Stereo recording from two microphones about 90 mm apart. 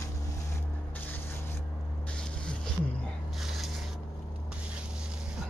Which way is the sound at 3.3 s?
Centre (ahead or behind).